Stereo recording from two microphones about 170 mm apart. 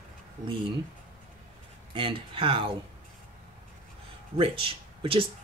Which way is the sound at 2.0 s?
30° right (ahead or behind).